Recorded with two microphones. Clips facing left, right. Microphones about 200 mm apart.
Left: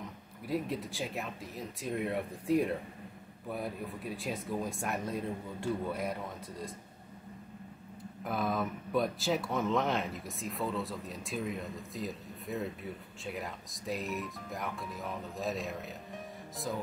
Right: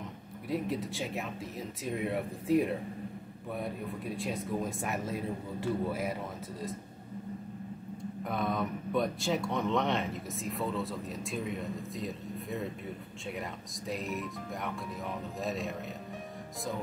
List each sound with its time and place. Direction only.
0.5 s speech: centre (ahead or behind)
8.2 s speech: centre (ahead or behind)